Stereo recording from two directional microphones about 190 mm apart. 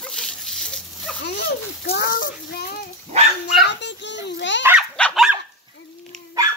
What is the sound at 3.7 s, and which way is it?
Speech, 70° left (ahead or behind).